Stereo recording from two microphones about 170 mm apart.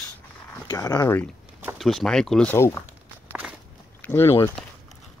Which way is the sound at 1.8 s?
Centre (ahead or behind).